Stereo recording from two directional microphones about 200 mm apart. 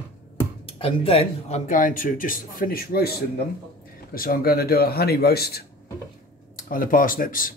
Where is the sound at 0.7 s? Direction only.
30° left (ahead or behind).